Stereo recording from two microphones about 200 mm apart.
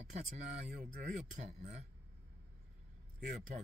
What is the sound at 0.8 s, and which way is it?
Speech, 35° right (ahead or behind).